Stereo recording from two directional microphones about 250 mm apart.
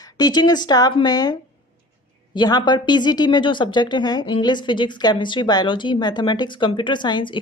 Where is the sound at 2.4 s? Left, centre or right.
Centre.